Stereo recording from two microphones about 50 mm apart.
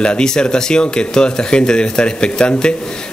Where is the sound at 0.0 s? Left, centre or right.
Centre.